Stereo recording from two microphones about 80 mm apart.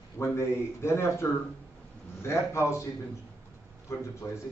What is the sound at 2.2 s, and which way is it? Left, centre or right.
Speech, left.